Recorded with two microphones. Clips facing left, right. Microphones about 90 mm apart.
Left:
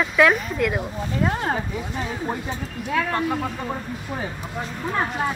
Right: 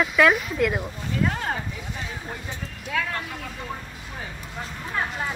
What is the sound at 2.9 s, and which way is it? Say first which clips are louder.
Speech: left 5 dB; 35° left (ahead or behind).